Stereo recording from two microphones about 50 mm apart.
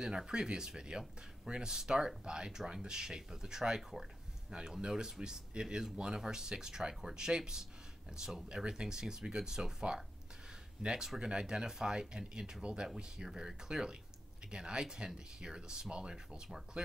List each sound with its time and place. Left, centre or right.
0.0 s speech: centre
8.5 s speech: centre